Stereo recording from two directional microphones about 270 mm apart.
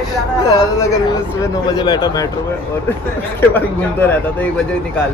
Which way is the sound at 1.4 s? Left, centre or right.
Centre.